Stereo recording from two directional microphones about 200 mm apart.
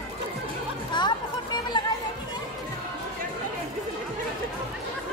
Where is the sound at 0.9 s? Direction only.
20° left (ahead or behind).